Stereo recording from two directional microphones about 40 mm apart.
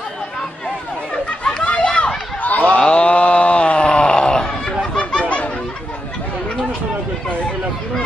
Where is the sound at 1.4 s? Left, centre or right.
Centre.